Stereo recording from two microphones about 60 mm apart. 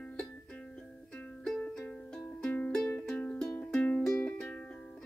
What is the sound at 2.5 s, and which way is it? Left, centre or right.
Music, left.